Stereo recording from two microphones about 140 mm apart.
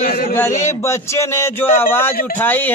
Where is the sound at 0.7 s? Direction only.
20° left (ahead or behind).